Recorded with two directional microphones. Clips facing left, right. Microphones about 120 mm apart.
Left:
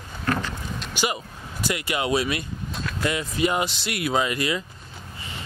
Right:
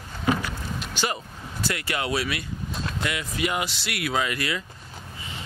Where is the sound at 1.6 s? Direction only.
15° left (ahead or behind).